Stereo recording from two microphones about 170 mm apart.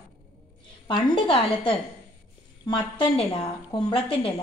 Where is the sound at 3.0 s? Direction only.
35° left (ahead or behind).